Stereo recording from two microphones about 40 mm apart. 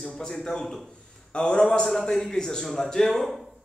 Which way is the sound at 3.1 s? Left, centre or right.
Centre.